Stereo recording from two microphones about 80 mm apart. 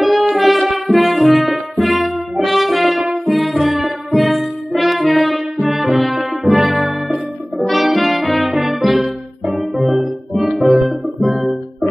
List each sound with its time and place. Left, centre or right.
0.0 s music: centre
0.7 s brass instrument: centre
3.0 s music: centre
4.7 s brass instrument: centre
6.8 s music: centre